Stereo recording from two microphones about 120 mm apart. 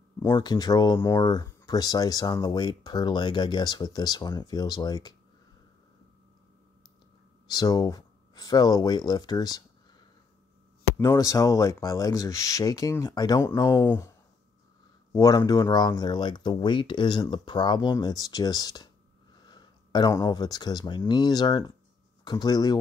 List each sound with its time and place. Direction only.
0.2 s speech: 35° left (ahead or behind)
7.4 s speech: 35° left (ahead or behind)
11.1 s speech: 30° left (ahead or behind)
15.1 s speech: 30° left (ahead or behind)